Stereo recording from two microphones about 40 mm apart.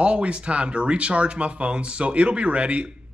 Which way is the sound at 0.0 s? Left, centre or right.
Right.